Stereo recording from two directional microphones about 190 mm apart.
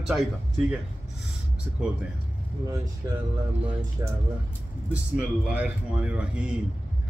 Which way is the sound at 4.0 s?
15° right (ahead or behind).